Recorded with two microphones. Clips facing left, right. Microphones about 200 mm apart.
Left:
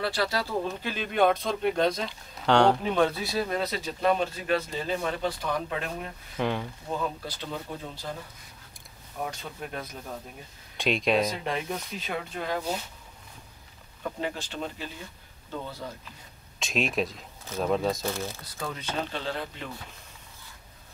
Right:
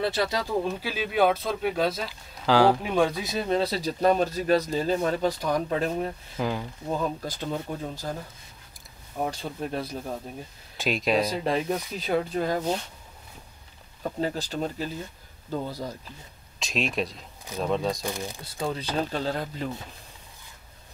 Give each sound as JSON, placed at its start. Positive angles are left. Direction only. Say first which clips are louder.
{"t": 0.0, "sound": "speech", "louder": "right 2 dB", "side_deg": -20}
{"t": 6.3, "sound": "speech", "louder": "left 2 dB", "side_deg": 0}
{"t": 7.2, "sound": "speech", "louder": "right 5 dB", "side_deg": -45}
{"t": 9.2, "sound": "speech", "louder": "right 5 dB", "side_deg": -30}
{"t": 10.8, "sound": "speech", "louder": "even", "side_deg": 0}
{"t": 11.2, "sound": "speech", "louder": "right 5 dB", "side_deg": -35}
{"t": 14.0, "sound": "speech", "louder": "right 4 dB", "side_deg": -35}
{"t": 16.5, "sound": "speech", "louder": "even", "side_deg": 0}
{"t": 18.0, "sound": "speech", "louder": "even", "side_deg": -15}
{"t": 18.4, "sound": "speech", "louder": "right 6 dB", "side_deg": -30}